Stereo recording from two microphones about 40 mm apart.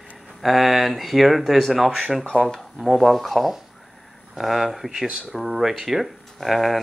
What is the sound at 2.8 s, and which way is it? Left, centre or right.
Speech, centre.